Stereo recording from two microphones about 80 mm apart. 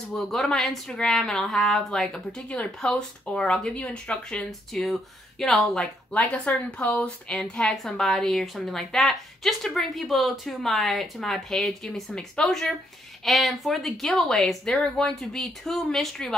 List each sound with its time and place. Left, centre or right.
0.1 s a woman's voice: centre
6.1 s speech: centre
7.3 s a woman's voice: centre